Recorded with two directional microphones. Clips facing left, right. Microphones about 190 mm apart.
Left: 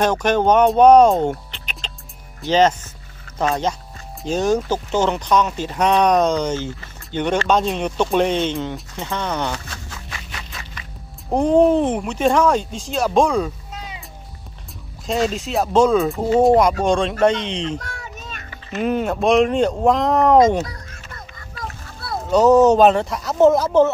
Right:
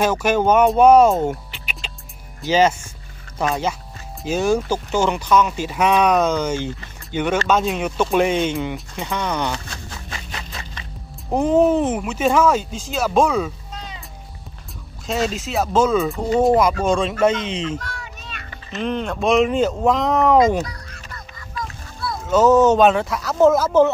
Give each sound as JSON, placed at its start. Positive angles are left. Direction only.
{"t": 0.0, "sound": "speech", "side_deg": -5}
{"t": 1.8, "sound": "music", "side_deg": -10}
{"t": 2.4, "sound": "speech", "side_deg": -10}
{"t": 9.8, "sound": "music", "side_deg": -30}
{"t": 11.3, "sound": "speech", "side_deg": -5}
{"t": 13.7, "sound": "cat", "side_deg": 10}
{"t": 15.2, "sound": "speech", "side_deg": 0}
{"t": 17.6, "sound": "a sound", "side_deg": 45}
{"t": 18.7, "sound": "speech", "side_deg": 10}
{"t": 20.3, "sound": "a sound", "side_deg": 45}
{"t": 22.3, "sound": "speech", "side_deg": 0}